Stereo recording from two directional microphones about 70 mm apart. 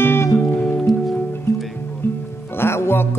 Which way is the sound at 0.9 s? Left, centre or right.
Centre.